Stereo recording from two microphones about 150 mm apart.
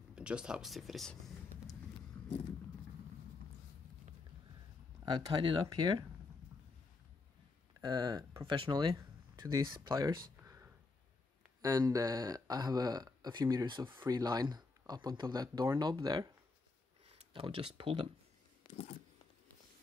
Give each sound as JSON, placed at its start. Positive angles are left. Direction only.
{"t": 0.1, "sound": "speech", "side_deg": -5}
{"t": 5.0, "sound": "speech", "side_deg": -35}
{"t": 7.8, "sound": "speech", "side_deg": -30}
{"t": 10.3, "sound": "a sound", "side_deg": -15}
{"t": 11.6, "sound": "speech", "side_deg": -25}
{"t": 18.7, "sound": "a sound", "side_deg": 45}